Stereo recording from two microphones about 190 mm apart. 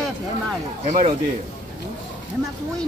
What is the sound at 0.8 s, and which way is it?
Speech, 40° right (ahead or behind).